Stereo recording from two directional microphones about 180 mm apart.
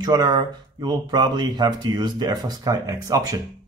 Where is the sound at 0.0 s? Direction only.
20° right (ahead or behind).